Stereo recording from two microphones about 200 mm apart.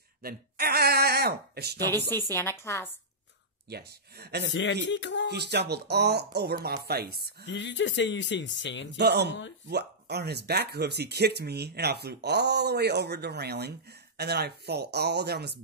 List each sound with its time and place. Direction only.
0.2 s speech: 50° right (ahead or behind)
2.0 s a woman's voice: 10° left (ahead or behind)
3.7 s speech: 55° right (ahead or behind)
4.8 s speech: 65° left (ahead or behind)
5.3 s speech: 55° right (ahead or behind)
7.4 s speech: 65° left (ahead or behind)
8.9 s speech: 55° right (ahead or behind)